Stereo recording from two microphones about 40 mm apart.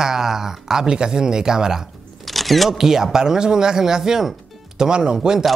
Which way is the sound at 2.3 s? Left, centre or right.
Centre.